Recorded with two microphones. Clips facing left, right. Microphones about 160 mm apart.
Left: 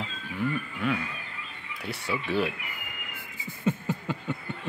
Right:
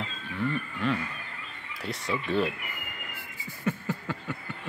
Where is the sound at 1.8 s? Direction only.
5° left (ahead or behind).